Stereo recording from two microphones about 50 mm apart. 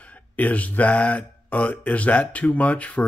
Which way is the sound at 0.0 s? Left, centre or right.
Left.